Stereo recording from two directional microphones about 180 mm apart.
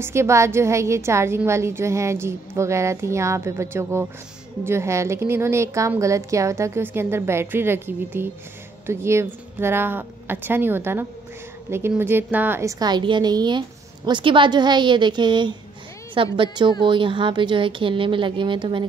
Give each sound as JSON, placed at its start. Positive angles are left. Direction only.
{"t": 0.0, "sound": "a woman's voice", "side_deg": -15}